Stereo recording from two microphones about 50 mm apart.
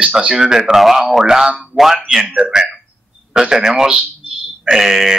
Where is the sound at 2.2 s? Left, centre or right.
Right; by 5.1 s centre.